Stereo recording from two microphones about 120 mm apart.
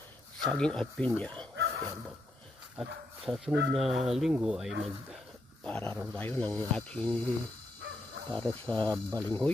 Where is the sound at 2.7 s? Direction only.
5° right (ahead or behind).